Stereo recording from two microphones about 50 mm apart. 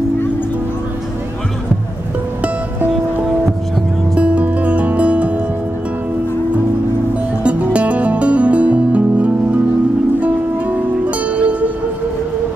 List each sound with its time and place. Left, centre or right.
4.1 s music: right
7.4 s music: right